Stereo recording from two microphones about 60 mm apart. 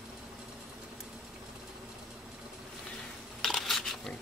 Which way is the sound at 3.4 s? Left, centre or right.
Centre.